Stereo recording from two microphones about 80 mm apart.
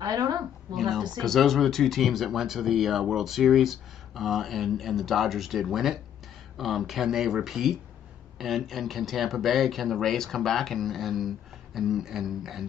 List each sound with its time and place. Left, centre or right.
0.0 s speech: right
0.7 s speech: centre